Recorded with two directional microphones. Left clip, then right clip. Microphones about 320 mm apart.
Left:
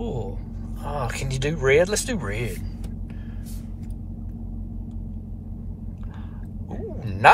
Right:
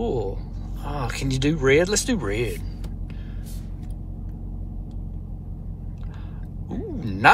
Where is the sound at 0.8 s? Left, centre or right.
Centre.